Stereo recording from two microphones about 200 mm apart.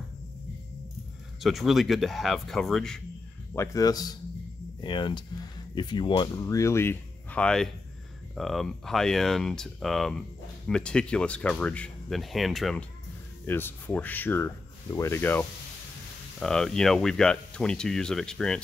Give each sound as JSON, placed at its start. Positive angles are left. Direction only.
{"t": 1.4, "sound": "speech", "side_deg": 0}
{"t": 3.5, "sound": "speech", "side_deg": 15}
{"t": 13.5, "sound": "speech", "side_deg": 10}